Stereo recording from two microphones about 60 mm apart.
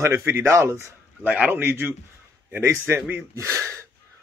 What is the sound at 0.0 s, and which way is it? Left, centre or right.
Speech, right.